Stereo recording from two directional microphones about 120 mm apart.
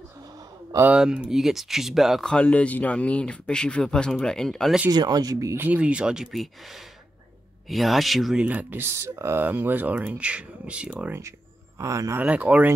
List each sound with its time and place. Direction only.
0.8 s speech: 10° right (ahead or behind)
4.9 s speech: 35° right (ahead or behind)
5.7 s speech: 10° right (ahead or behind)
8.5 s speech: 15° right (ahead or behind)
11.8 s speech: 25° right (ahead or behind)
12.2 s speech: 10° right (ahead or behind)